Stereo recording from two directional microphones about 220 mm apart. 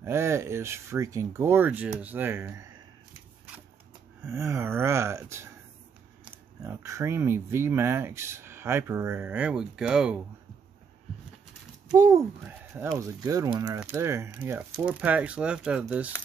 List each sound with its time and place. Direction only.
0.0 s speech: 10° right (ahead or behind)
4.3 s speech: 10° right (ahead or behind)
11.9 s speech: 15° right (ahead or behind)